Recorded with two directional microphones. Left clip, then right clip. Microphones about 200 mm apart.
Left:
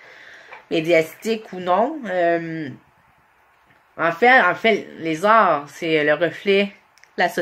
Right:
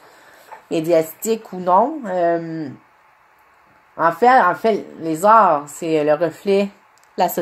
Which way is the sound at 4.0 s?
Centre (ahead or behind).